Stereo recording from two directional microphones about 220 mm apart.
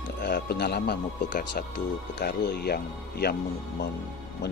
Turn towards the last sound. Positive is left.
turn(degrees=45)  # may be behind; listen again after turning